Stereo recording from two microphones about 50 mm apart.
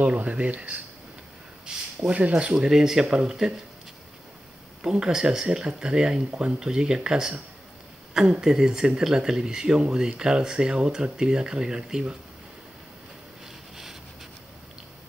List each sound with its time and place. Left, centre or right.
0.0 s speech: right
1.7 s a sound: centre
2.0 s speech: right
2.5 s speech: centre
4.9 s speech: centre